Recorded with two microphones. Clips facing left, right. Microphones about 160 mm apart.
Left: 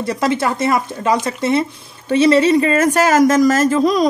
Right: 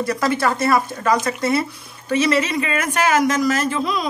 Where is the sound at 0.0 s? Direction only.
25° left (ahead or behind).